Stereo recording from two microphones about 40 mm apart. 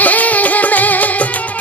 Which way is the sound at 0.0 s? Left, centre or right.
Left.